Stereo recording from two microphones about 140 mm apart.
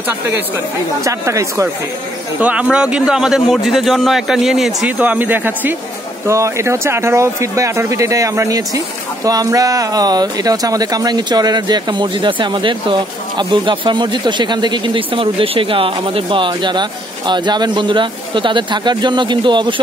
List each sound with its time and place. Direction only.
1.0 s speech: 20° right (ahead or behind)
2.4 s a man's voice: 10° right (ahead or behind); by 19.7 s 35° right (ahead or behind)